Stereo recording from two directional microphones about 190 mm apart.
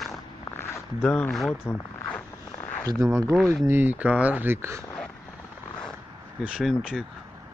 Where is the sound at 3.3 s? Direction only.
Centre (ahead or behind).